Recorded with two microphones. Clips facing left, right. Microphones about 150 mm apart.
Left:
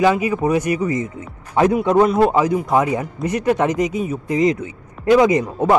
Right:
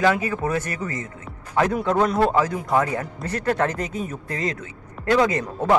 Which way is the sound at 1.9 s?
10° left (ahead or behind).